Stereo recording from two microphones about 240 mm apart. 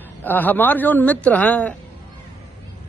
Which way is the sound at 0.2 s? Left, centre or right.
Centre.